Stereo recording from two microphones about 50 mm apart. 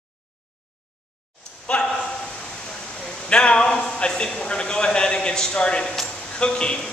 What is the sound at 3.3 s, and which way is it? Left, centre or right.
A man's voice, left.